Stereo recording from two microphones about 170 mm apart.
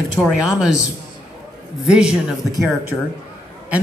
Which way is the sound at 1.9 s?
5° right (ahead or behind).